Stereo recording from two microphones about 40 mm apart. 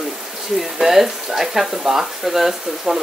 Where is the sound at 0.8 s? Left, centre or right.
Centre.